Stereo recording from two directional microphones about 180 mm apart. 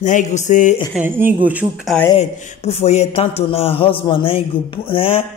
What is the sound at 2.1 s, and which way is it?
Speech, 35° left (ahead or behind).